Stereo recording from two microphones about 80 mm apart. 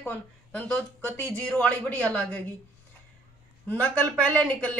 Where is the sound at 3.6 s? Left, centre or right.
Centre.